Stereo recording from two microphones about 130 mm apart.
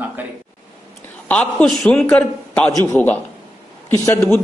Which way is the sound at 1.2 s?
10° left (ahead or behind).